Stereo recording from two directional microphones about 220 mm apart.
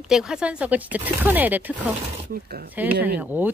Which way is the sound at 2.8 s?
10° right (ahead or behind).